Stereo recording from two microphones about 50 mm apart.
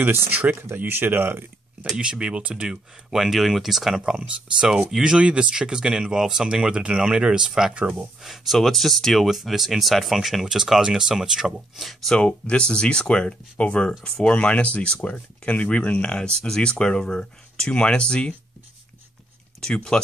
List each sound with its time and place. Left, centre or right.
0.0 s speech: right
2.0 s speech: centre
3.9 s speech: centre
12.2 s speech: left
19.6 s speech: centre